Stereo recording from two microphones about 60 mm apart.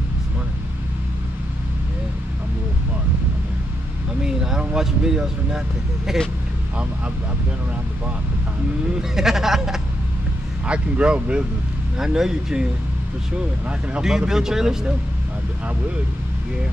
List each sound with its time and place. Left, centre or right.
4.2 s a sound: centre
6.1 s speech: centre
9.1 s speech: centre
10.7 s speech: centre
14.0 s speech: centre